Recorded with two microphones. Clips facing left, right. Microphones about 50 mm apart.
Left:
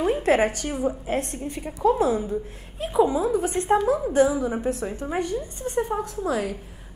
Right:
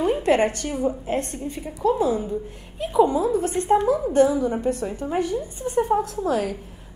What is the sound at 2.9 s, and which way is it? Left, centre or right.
Speech, centre.